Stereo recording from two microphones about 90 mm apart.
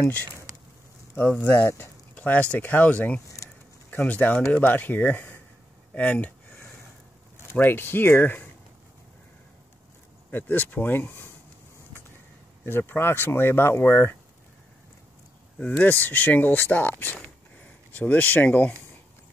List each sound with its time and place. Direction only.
0.0 s speech: 20° left (ahead or behind)
2.1 s speech: 15° left (ahead or behind)
5.9 s a sound: 15° left (ahead or behind)
7.5 s speech: 20° left (ahead or behind)
10.3 s speech: 20° left (ahead or behind)
12.6 s speech: 25° left (ahead or behind)
15.6 s speech: 20° left (ahead or behind)